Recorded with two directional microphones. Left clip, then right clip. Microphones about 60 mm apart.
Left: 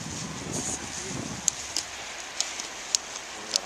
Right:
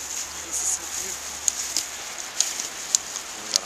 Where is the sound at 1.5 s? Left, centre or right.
Left.